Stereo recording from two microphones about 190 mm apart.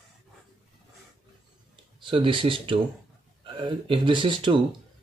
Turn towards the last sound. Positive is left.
turn(degrees=-25)  # may be behind; listen again after turning